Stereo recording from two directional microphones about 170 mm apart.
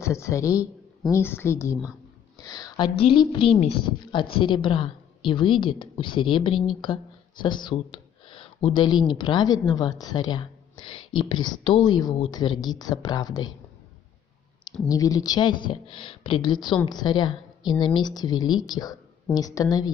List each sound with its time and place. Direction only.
0.0 s a man's voice: 15° left (ahead or behind)
14.9 s a woman's voice: 20° left (ahead or behind)